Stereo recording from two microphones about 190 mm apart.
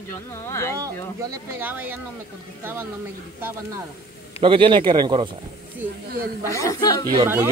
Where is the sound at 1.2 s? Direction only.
10° right (ahead or behind).